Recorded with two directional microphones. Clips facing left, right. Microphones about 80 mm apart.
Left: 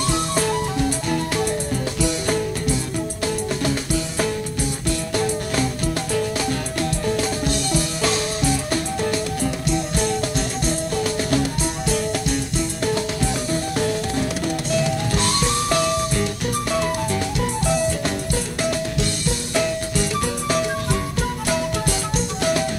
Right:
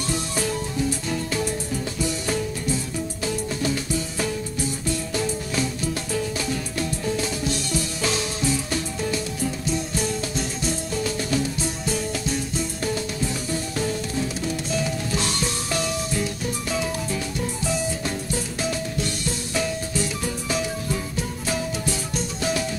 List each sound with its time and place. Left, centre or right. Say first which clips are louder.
0.1 s music: left 3 dB; left
3.6 s music: left 3 dB; left
9.7 s music: left 5 dB; left
12.8 s music: left 5 dB; left